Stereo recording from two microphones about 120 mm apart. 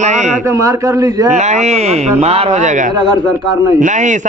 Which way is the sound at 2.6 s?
90° right.